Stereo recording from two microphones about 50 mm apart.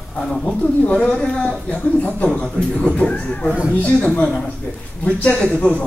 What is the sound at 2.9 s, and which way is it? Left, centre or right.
Speech, left.